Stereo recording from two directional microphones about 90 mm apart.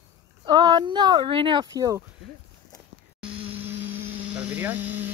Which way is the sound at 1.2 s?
75° right (ahead or behind).